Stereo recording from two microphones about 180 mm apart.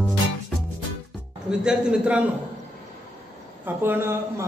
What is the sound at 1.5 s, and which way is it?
Speech, 5° right (ahead or behind).